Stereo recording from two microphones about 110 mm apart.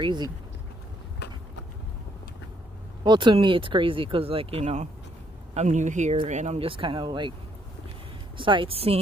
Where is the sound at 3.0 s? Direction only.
45° right (ahead or behind); by 6.7 s 90° right.